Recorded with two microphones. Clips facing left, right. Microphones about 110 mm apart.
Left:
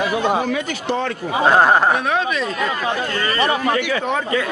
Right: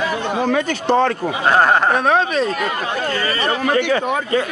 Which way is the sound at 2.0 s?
40° right (ahead or behind).